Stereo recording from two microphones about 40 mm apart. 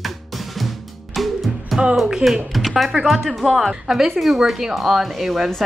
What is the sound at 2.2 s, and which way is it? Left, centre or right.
Speech, right.